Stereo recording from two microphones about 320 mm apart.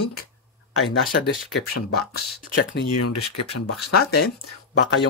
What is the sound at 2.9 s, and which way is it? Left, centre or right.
Speech, left.